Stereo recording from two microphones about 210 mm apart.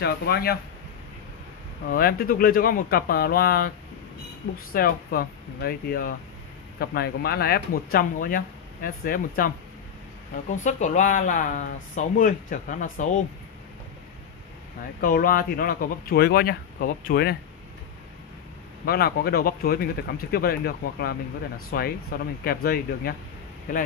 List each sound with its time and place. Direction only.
0.0 s speech: 50° left (ahead or behind)
1.9 s speech: 45° left (ahead or behind)
4.7 s speech: 45° left (ahead or behind)
10.5 s speech: 35° left (ahead or behind)
15.0 s speech: 45° left (ahead or behind)
18.9 s speech: 50° left (ahead or behind)